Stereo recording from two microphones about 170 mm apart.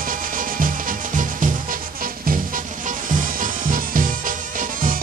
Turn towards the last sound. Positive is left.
turn(degrees=-55)  # may be behind; listen again after turning